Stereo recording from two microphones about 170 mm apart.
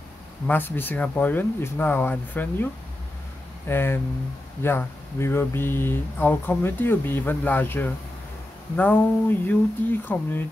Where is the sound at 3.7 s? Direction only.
15° left (ahead or behind).